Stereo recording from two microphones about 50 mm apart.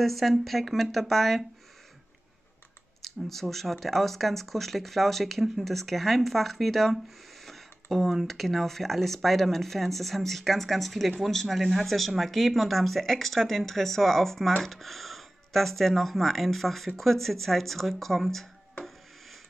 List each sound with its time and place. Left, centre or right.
0.0 s speech: centre
3.3 s speech: centre
7.4 s a sound: centre
8.3 s speech: centre